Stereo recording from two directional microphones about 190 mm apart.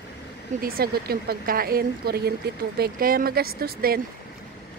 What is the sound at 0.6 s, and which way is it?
A woman's voice, 50° right (ahead or behind).